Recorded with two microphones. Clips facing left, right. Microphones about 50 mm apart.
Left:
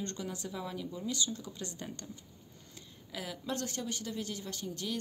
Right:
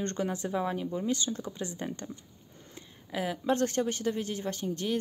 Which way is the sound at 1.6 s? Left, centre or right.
Right.